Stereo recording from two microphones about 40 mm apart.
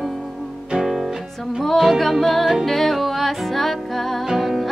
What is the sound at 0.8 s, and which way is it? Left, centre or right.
Music, centre.